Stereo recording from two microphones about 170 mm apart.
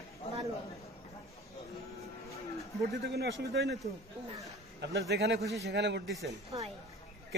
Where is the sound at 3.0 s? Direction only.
75° right (ahead or behind).